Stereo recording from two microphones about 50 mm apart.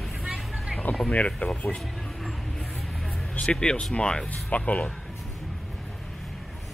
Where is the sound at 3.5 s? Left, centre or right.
Centre.